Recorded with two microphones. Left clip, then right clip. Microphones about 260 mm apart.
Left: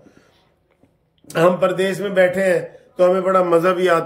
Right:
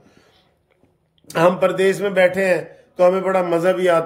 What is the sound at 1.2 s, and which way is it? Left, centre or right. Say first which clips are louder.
A man's voice: even; centre.